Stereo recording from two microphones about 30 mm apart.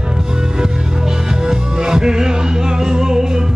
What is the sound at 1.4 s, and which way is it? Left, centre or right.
Music, right.